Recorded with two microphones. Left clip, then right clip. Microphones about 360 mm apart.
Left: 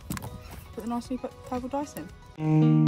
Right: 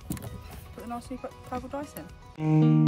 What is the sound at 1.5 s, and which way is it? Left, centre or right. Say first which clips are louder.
Speech: left 4 dB; centre.